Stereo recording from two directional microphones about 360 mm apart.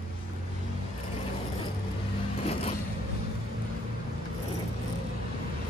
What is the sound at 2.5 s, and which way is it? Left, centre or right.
Zipper, centre.